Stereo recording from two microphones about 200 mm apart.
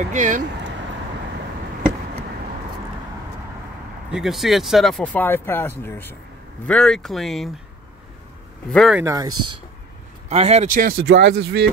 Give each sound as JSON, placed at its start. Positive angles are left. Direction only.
{"t": 0.1, "sound": "speech", "side_deg": -40}
{"t": 4.1, "sound": "speech", "side_deg": 0}
{"t": 8.6, "sound": "speech", "side_deg": 0}
{"t": 9.0, "sound": "speech", "side_deg": -15}
{"t": 10.3, "sound": "speech", "side_deg": -30}